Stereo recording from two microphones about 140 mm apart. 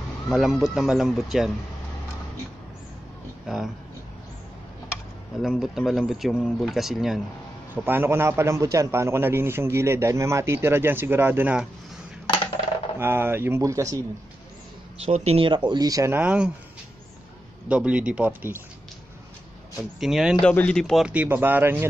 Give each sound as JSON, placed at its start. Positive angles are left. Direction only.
{"t": 0.3, "sound": "speech", "side_deg": 0}
{"t": 3.4, "sound": "speech", "side_deg": 0}
{"t": 5.4, "sound": "speech", "side_deg": 0}
{"t": 7.7, "sound": "a man's voice", "side_deg": -15}
{"t": 13.0, "sound": "a man's voice", "side_deg": -15}
{"t": 15.0, "sound": "speech", "side_deg": -45}
{"t": 17.6, "sound": "a man's voice", "side_deg": -10}
{"t": 20.0, "sound": "speech", "side_deg": -5}
{"t": 20.4, "sound": "speech", "side_deg": 10}
{"t": 21.1, "sound": "a man's voice", "side_deg": -10}